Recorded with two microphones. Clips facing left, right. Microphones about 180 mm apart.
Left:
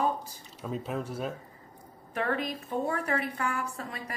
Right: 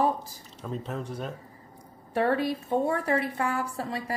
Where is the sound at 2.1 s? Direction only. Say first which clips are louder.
Right 6 dB; 30° right (ahead or behind).